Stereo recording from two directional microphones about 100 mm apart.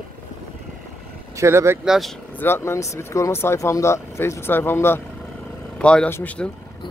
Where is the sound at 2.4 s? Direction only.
25° left (ahead or behind).